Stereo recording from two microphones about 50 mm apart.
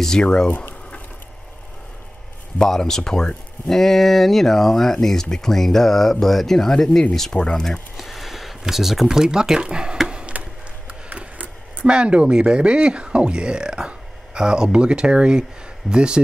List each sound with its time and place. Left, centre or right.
0.0 s speech: centre
2.6 s speech: centre
8.0 s speech: centre
10.0 s chop: centre
10.3 s a sound: right
11.9 s speech: right